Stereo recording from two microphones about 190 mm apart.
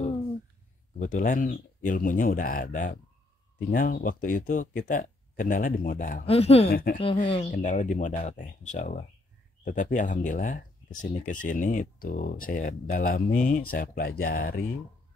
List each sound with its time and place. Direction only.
0.9 s speech: 40° left (ahead or behind)
6.2 s speech: 30° left (ahead or behind)
6.7 s speech: 50° left (ahead or behind)
7.2 s speech: 30° left (ahead or behind)
7.5 s speech: 40° left (ahead or behind)